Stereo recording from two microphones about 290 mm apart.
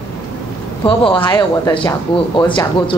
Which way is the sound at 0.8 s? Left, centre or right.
Centre.